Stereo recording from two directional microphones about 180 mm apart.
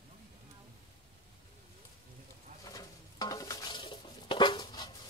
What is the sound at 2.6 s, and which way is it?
Stir, 20° left (ahead or behind).